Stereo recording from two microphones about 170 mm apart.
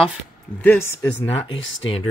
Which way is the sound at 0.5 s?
10° left (ahead or behind).